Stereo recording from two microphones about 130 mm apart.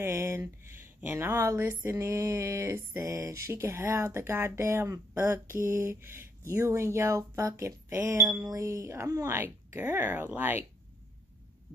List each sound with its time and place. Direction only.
0.0 s speech: 15° right (ahead or behind)